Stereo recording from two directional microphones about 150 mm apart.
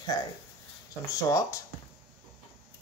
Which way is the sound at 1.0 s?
20° left (ahead or behind).